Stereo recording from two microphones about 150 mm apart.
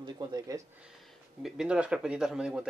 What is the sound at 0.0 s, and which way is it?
Speech, 30° right (ahead or behind).